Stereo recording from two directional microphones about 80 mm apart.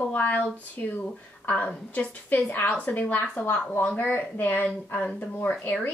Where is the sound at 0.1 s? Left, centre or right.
Left.